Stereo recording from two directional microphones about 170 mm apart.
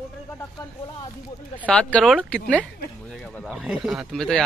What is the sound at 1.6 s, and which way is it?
Speech, 5° left (ahead or behind).